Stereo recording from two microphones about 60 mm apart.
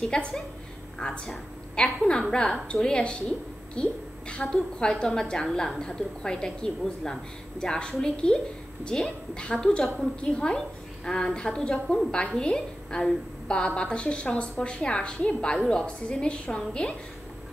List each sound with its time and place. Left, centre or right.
0.0 s a woman's voice: centre